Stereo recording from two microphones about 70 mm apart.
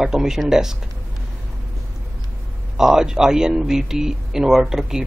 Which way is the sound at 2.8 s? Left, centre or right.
Centre.